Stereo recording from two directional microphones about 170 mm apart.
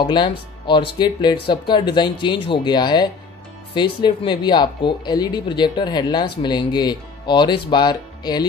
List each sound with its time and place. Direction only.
0.0 s speech: 30° left (ahead or behind)